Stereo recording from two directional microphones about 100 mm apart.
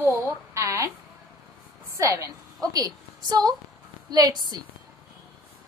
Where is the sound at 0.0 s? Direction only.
25° right (ahead or behind).